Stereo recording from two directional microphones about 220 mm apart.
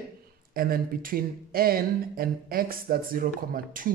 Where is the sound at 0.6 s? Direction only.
40° right (ahead or behind).